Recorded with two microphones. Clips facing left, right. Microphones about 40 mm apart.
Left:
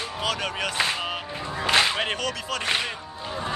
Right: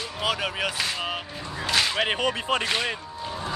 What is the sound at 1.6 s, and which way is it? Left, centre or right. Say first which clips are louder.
Whip: left 3 dB; left.